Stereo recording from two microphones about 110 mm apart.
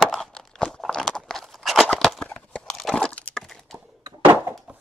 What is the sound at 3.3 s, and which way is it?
Crack, centre (ahead or behind).